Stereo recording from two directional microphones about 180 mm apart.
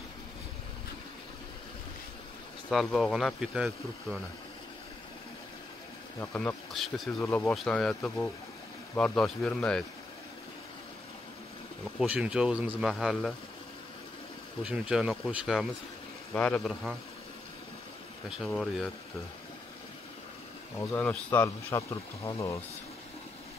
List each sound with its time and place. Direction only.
2.7 s speech: centre (ahead or behind)
6.1 s speech: 10° left (ahead or behind)
12.0 s speech: 5° right (ahead or behind)
14.6 s speech: 5° right (ahead or behind)
18.4 s speech: centre (ahead or behind)
20.9 s speech: 10° left (ahead or behind)